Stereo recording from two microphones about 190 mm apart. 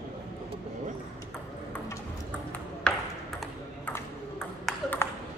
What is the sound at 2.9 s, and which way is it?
Ping, 5° left (ahead or behind).